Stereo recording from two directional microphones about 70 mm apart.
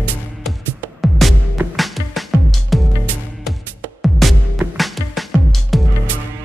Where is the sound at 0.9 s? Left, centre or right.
Centre.